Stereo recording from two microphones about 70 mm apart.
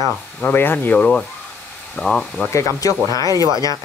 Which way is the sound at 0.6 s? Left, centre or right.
Left.